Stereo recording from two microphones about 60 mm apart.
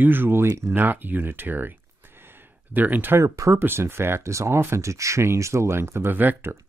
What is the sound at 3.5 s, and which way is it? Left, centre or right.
Speech, right.